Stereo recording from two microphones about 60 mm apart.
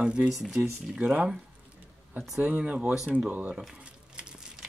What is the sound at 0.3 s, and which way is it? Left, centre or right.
Speech, centre.